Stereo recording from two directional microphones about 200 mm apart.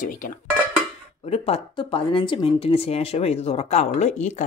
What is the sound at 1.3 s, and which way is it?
Speech, 30° left (ahead or behind).